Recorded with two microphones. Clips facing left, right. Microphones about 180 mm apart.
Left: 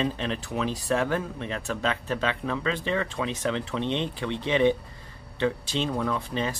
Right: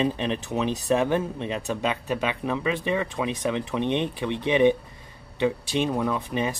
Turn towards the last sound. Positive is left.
turn(degrees=-15)  # may be behind; listen again after turning